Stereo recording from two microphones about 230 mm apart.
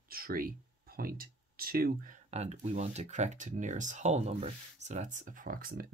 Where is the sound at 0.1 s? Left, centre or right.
Right.